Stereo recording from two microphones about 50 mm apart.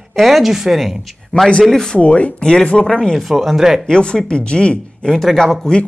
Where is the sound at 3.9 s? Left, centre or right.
Centre.